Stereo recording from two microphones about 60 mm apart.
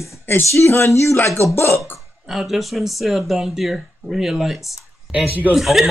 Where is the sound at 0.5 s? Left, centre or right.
Left.